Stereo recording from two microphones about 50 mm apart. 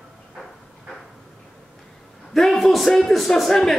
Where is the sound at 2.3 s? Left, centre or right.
Centre.